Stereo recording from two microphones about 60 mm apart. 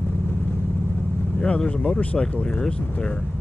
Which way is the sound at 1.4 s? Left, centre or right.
Centre.